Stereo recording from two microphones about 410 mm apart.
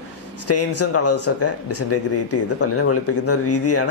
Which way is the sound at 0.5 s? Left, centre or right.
Left.